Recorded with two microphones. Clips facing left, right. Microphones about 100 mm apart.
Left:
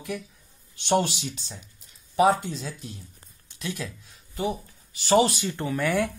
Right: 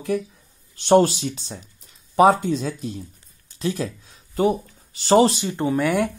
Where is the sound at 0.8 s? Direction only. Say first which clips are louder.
Right 8 dB; 40° right (ahead or behind).